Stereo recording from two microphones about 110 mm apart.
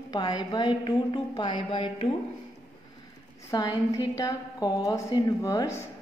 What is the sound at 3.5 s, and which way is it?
A woman's voice, 35° left (ahead or behind).